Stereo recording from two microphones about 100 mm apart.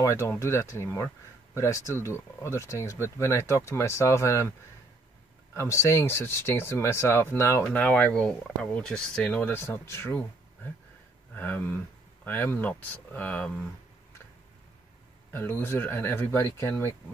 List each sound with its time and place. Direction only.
0.0 s speech: 30° left (ahead or behind)
7.6 s speech: 10° left (ahead or behind)
11.3 s speech: 20° left (ahead or behind)
15.3 s speech: 20° left (ahead or behind)